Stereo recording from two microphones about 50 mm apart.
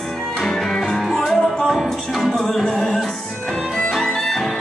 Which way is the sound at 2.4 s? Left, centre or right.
Centre.